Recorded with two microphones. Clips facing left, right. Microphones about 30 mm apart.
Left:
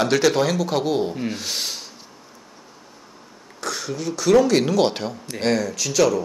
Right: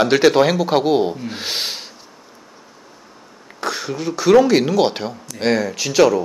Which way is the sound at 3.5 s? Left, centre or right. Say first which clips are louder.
Right 4 dB; right.